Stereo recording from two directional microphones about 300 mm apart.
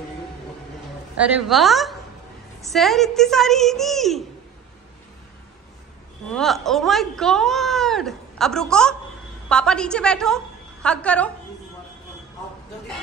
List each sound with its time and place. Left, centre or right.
1.1 s speech: centre
6.3 s a woman's voice: centre